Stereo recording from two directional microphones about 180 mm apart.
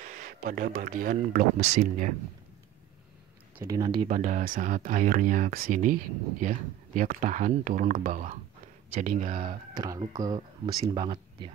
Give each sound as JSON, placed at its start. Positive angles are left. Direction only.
{"t": 0.0, "sound": "speech", "side_deg": -45}
{"t": 3.5, "sound": "speech", "side_deg": -20}
{"t": 4.1, "sound": "speech", "side_deg": -45}
{"t": 9.5, "sound": "speech", "side_deg": -20}